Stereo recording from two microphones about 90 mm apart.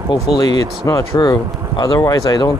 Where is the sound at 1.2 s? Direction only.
50° left (ahead or behind).